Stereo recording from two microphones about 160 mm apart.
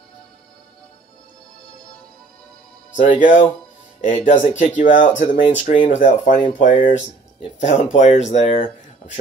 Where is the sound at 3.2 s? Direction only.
50° left (ahead or behind).